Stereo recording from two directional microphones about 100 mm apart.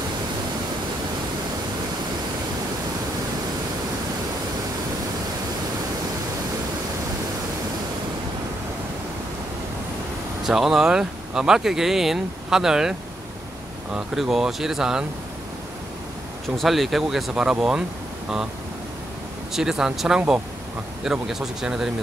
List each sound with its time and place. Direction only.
10.4 s speech: 5° right (ahead or behind)
13.9 s speech: 5° right (ahead or behind)
16.4 s speech: centre (ahead or behind)
19.5 s speech: 5° right (ahead or behind)